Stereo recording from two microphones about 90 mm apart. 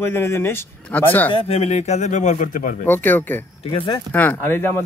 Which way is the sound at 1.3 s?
85° left.